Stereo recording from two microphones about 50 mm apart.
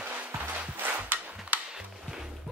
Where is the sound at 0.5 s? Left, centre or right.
Right.